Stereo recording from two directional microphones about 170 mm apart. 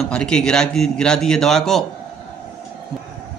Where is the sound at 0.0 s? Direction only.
5° left (ahead or behind).